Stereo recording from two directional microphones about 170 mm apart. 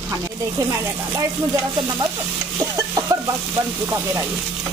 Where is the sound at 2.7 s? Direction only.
20° right (ahead or behind).